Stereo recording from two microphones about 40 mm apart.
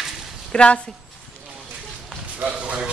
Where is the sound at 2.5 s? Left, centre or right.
Right.